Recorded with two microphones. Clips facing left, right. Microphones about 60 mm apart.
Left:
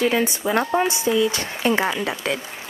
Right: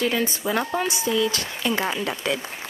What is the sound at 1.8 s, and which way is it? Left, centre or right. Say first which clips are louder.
Speech: left 3 dB; centre.